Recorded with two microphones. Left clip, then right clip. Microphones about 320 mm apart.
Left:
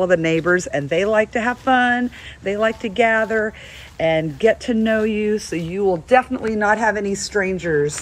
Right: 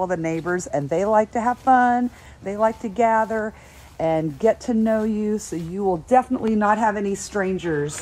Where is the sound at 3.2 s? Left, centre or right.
Centre.